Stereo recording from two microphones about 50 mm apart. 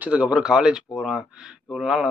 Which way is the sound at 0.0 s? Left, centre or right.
Right.